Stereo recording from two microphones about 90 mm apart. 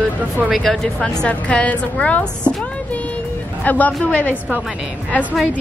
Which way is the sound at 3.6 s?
20° left (ahead or behind).